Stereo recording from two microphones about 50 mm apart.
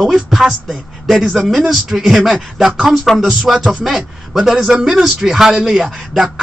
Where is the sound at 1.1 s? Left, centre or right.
Centre.